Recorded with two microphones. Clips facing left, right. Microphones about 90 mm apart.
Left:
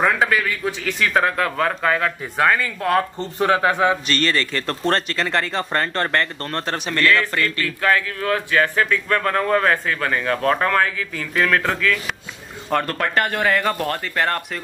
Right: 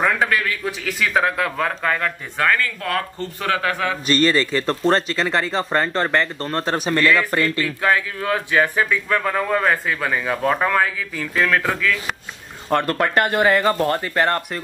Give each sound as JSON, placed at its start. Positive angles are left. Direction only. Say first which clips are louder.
{"t": 0.0, "sound": "a man's voice", "louder": "left 1 dB", "side_deg": 5}
{"t": 2.8, "sound": "speech", "louder": "left 4 dB", "side_deg": 25}
{"t": 4.2, "sound": "a man's voice", "louder": "right 4 dB", "side_deg": -10}
{"t": 7.2, "sound": "a man's voice", "louder": "right 2 dB", "side_deg": -20}